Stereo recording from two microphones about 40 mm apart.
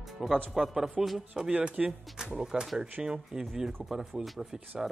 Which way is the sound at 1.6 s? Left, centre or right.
Right.